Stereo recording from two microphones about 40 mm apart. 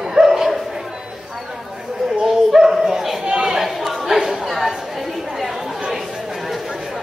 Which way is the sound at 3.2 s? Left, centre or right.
Centre.